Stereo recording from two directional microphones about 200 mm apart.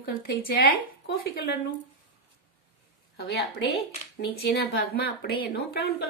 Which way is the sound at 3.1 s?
55° left (ahead or behind).